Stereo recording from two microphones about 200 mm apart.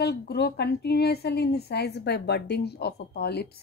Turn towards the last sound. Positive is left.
turn(degrees=55)  # may be behind; listen again after turning